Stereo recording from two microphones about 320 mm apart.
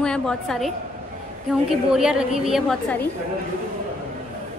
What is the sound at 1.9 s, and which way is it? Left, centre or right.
A woman's voice, centre.